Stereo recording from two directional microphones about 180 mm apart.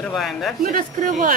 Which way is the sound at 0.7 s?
50° right (ahead or behind).